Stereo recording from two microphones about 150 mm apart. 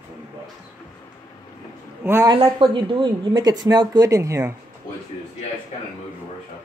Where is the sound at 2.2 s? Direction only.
30° right (ahead or behind).